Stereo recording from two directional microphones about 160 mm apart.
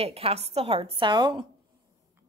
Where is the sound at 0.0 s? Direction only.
40° right (ahead or behind).